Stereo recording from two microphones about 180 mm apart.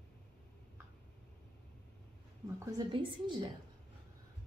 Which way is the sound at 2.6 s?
25° right (ahead or behind).